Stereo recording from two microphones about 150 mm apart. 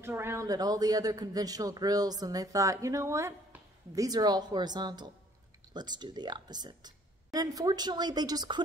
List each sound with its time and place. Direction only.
0.0 s a man's voice: 15° right (ahead or behind)